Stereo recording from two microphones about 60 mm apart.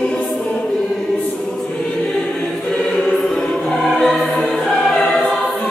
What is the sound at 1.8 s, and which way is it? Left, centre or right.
Choir, left.